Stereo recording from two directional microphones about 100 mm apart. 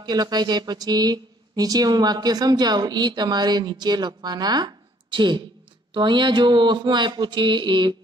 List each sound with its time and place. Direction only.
0.0 s speech: 45° right (ahead or behind)